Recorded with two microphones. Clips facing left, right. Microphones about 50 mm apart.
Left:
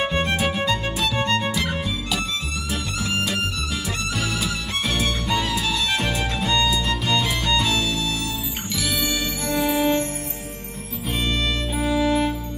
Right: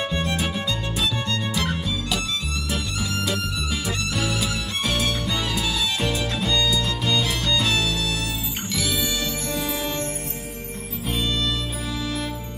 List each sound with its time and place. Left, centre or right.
0.0 s music: left
1.5 s music: centre
3.3 s music: centre
8.9 s music: left
11.1 s music: left